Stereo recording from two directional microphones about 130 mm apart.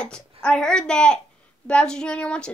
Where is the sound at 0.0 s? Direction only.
5° left (ahead or behind).